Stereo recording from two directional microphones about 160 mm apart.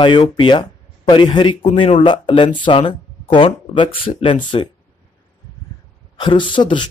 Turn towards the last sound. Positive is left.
turn(degrees=30)  # may be behind; listen again after turning